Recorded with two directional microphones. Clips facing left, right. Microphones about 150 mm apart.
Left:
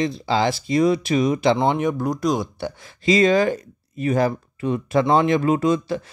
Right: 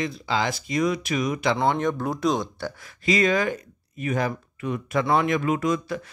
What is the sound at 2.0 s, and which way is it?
Speech, centre (ahead or behind).